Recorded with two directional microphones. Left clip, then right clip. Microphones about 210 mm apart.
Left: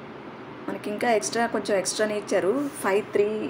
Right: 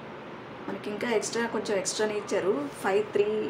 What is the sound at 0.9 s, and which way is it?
A woman's voice, 20° left (ahead or behind).